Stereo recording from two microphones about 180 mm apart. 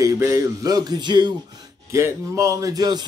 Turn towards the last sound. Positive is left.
turn(degrees=-20)  # may be behind; listen again after turning